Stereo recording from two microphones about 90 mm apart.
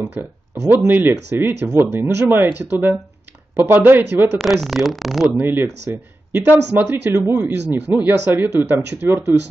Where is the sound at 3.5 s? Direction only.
25° right (ahead or behind).